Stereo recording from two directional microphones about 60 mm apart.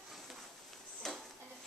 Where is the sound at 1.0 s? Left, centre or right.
Centre.